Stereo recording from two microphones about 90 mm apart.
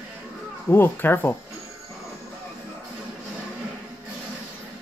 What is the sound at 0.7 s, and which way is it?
Speech, 25° left (ahead or behind).